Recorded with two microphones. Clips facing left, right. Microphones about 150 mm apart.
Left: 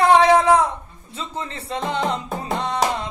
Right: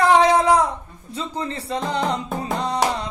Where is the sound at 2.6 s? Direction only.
35° right (ahead or behind).